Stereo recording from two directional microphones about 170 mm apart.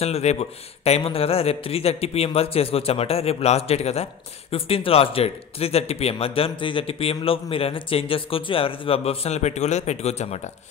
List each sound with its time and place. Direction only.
0.0 s speech: 40° left (ahead or behind)